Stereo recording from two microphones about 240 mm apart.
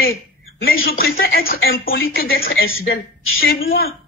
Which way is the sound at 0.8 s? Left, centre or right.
Left.